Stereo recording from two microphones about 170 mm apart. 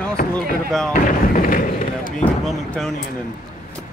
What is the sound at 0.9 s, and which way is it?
Speech, 55° left (ahead or behind).